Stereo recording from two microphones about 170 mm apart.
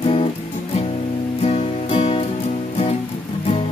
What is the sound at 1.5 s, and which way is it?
Music, 35° left (ahead or behind).